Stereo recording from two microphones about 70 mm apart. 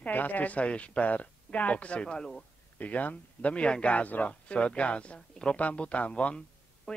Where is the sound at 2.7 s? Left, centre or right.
Left.